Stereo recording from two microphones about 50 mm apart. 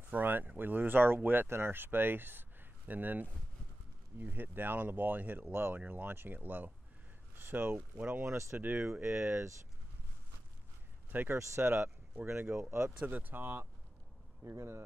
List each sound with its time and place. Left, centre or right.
0.1 s speech: right
7.7 s speech: right
8.3 s speech: right
8.5 s speech: right
9.0 s speech: right
11.1 s speech: right
11.6 s speech: right
13.0 s speech: right
14.4 s speech: right